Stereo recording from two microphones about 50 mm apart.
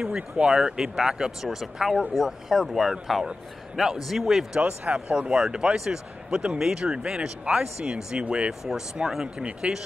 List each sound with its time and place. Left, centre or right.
0.0 s speech: centre
4.6 s speech: right